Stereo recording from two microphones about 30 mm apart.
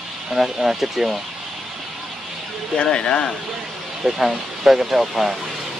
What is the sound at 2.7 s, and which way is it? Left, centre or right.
Speech, left.